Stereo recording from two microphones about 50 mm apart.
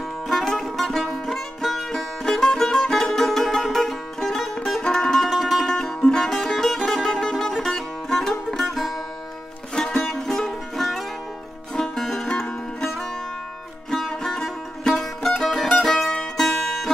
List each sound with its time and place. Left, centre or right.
0.3 s music: centre
9.8 s music: centre
13.8 s music: centre